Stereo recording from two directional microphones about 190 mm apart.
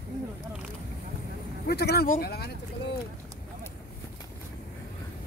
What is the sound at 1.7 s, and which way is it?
Speech, 60° left (ahead or behind).